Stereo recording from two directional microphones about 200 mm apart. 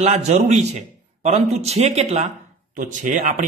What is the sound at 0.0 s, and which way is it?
A man's voice, 35° right (ahead or behind).